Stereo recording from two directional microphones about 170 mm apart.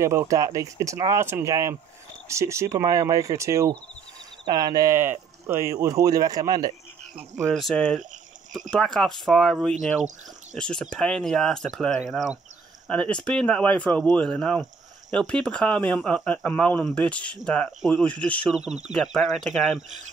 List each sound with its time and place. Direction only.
0.0 s speech: 15° right (ahead or behind)
7.5 s speech: 5° left (ahead or behind)